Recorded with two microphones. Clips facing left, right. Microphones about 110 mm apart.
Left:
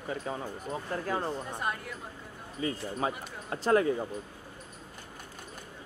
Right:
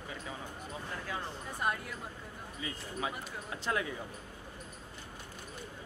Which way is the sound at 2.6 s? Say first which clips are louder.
Left 7 dB; 40° left (ahead or behind).